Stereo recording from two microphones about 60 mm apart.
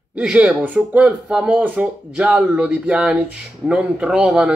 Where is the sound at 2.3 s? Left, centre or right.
Centre.